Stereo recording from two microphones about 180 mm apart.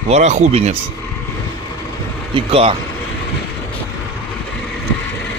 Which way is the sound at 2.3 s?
30° right (ahead or behind).